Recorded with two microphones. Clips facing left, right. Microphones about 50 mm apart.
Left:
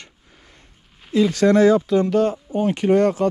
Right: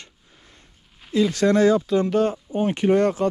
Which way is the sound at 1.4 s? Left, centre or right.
Left.